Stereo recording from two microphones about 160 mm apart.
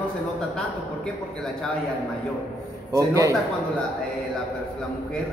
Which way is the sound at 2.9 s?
20° right (ahead or behind).